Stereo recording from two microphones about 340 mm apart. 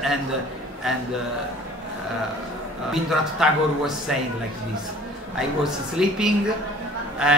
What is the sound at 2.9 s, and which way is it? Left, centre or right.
A man's voice, centre.